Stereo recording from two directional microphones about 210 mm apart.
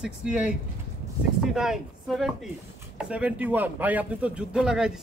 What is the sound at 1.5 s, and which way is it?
Speech, centre (ahead or behind).